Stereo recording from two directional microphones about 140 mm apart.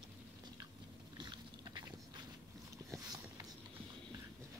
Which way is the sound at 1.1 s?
30° right (ahead or behind).